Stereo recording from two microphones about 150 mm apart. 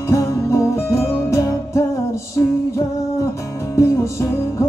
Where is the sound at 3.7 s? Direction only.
20° left (ahead or behind).